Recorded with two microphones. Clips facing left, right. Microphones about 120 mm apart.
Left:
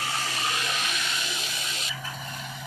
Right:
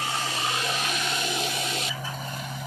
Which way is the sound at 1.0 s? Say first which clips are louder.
Right 6 dB; 45° right (ahead or behind).